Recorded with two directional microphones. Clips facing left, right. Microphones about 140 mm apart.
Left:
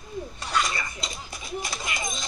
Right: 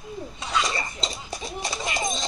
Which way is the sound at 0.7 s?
30° right (ahead or behind).